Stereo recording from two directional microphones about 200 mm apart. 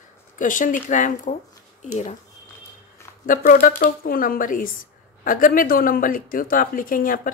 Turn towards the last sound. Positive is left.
turn(degrees=45)  # may be behind; listen again after turning